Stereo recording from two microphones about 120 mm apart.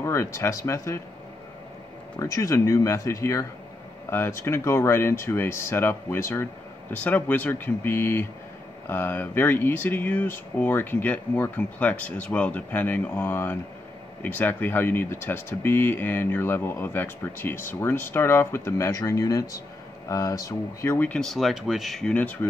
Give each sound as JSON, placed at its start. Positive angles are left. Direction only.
{"t": 0.0, "sound": "speech", "side_deg": 25}
{"t": 2.1, "sound": "speech", "side_deg": 30}
{"t": 21.1, "sound": "speech", "side_deg": 5}